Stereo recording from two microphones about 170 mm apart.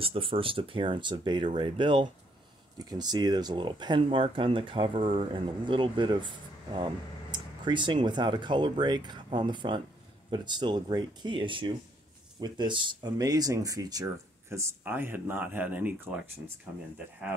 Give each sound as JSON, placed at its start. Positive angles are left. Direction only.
{"t": 0.0, "sound": "speech", "side_deg": -30}